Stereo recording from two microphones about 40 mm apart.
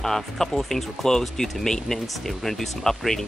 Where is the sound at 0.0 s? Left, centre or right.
Centre.